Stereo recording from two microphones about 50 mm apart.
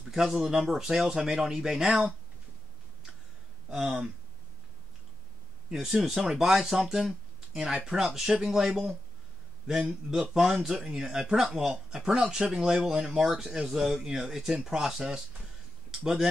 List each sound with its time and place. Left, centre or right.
0.1 s speech: centre
1.9 s speech: right
3.7 s speech: centre
5.7 s speech: centre